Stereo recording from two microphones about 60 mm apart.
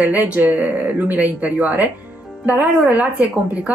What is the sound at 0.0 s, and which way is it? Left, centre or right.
Speech, right.